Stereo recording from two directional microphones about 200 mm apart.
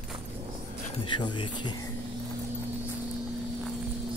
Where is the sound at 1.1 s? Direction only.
25° left (ahead or behind).